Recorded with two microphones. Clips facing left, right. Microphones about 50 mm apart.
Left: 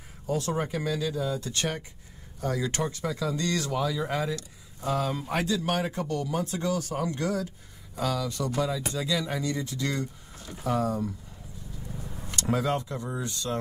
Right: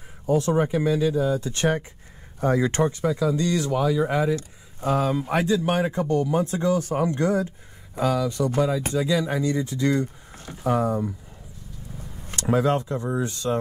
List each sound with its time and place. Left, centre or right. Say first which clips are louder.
0.3 s speech: right 8 dB; right
5.2 s speech: right 6 dB; right
12.3 s speech: right 6 dB; right